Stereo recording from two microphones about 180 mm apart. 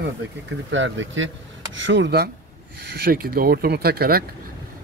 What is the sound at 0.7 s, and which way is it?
Speech, 90° right.